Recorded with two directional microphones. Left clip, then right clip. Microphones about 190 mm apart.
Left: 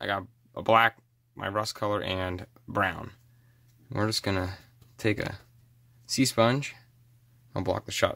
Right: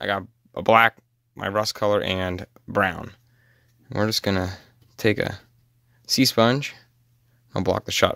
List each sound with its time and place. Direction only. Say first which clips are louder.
0.0 s speech: right 5 dB; 40° right (ahead or behind)